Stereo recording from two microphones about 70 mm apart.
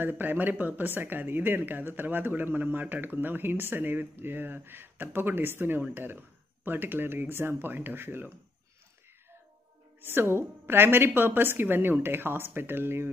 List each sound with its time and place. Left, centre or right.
0.0 s a woman's voice: right
10.0 s a woman's voice: right